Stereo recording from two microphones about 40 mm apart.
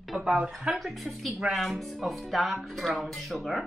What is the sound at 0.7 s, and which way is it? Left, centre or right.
Speech, centre.